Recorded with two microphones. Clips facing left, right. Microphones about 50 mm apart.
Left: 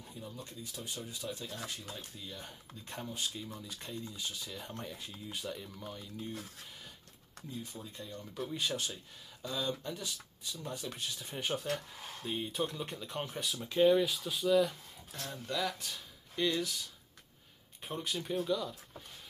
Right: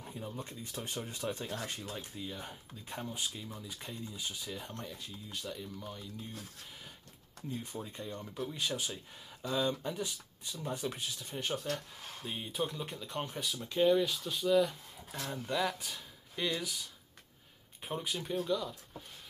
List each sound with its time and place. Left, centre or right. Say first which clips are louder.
0.0 s speech: right 4 dB; right
0.7 s speech: right 4 dB; right
2.0 s speech: right 4 dB; centre
2.9 s speech: even; centre
4.7 s speech: even; centre
7.5 s speech: right 3 dB; right
8.4 s speech: left 1 dB; centre
9.4 s speech: right 4 dB; right
11.2 s speech: left 1 dB; centre
15.0 s speech: right 3 dB; centre